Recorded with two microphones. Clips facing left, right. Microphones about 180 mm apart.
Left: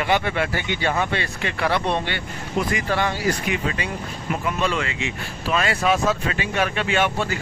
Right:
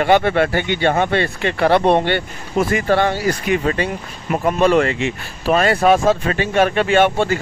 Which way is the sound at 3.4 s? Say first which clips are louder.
Right 7 dB; 40° right (ahead or behind).